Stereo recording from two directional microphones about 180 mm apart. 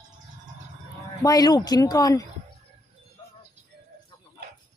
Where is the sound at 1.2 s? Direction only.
20° left (ahead or behind).